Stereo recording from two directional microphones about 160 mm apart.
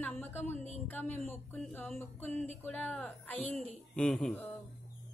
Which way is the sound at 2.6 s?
10° left (ahead or behind).